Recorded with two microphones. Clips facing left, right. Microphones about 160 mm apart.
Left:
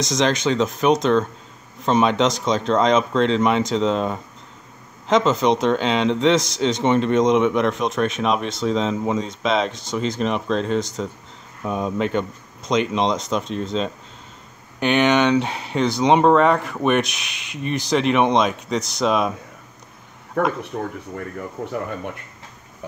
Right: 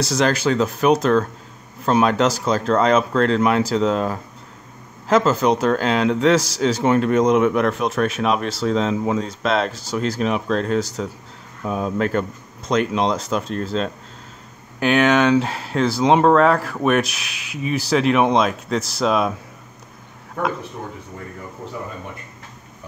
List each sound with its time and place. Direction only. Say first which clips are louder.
0.0 s a man's voice: right 1 dB; 5° right (ahead or behind)
20.4 s speech: left 3 dB; 75° left (ahead or behind)
20.7 s speech: left 5 dB; 60° left (ahead or behind)